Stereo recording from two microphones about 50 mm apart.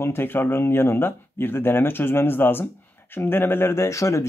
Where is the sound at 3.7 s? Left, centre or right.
Left.